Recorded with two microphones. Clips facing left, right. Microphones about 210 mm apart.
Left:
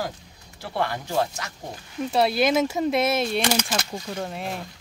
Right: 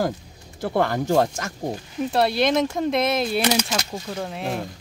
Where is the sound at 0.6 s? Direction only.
45° right (ahead or behind).